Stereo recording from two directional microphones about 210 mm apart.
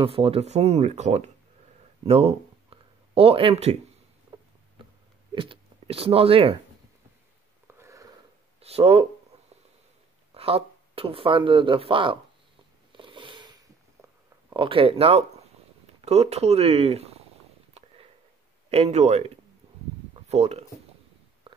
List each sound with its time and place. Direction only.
0.0 s speech: 25° right (ahead or behind)
2.0 s a sound: 30° right (ahead or behind)
5.3 s speech: 25° right (ahead or behind)
7.6 s sniff: 15° right (ahead or behind)
8.5 s speech: 30° right (ahead or behind)
10.3 s speech: 25° right (ahead or behind)
12.9 s a sound: 25° right (ahead or behind)
14.5 s speech: 25° right (ahead or behind)
18.7 s speech: 30° right (ahead or behind)
21.5 s a sound: 25° right (ahead or behind)